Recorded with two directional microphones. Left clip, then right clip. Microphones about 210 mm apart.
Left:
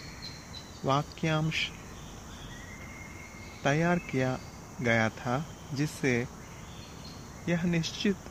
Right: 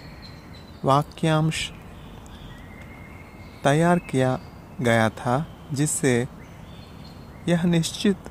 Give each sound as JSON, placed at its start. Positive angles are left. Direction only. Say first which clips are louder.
{"t": 0.8, "sound": "speech", "louder": "right 8 dB", "side_deg": -20}
{"t": 3.6, "sound": "speech", "louder": "right 8 dB", "side_deg": -20}
{"t": 7.4, "sound": "speech", "louder": "right 8 dB", "side_deg": -20}